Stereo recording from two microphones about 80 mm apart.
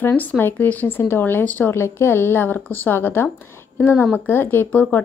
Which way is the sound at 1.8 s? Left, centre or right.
Left.